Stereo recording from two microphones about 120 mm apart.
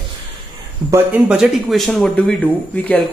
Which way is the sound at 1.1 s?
5° right (ahead or behind).